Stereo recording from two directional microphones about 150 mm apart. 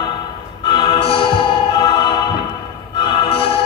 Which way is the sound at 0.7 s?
30° left (ahead or behind).